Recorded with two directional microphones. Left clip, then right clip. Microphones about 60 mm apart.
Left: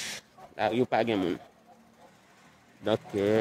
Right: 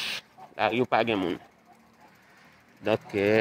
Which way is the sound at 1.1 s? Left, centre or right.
Left.